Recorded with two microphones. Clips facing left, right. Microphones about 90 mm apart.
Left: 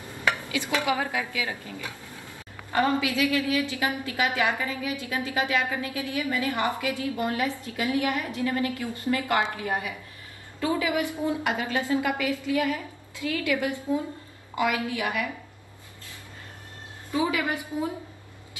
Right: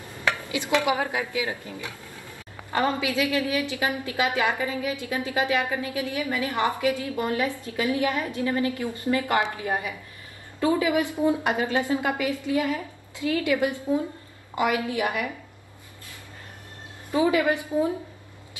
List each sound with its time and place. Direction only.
0.5 s dishes: 25° right (ahead or behind)
0.8 s a woman's voice: 25° right (ahead or behind)
2.7 s a woman's voice: 20° right (ahead or behind)
17.3 s a woman's voice: 25° right (ahead or behind)